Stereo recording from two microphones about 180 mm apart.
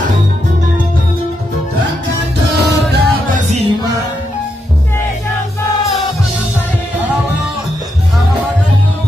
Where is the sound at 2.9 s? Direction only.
60° right (ahead or behind).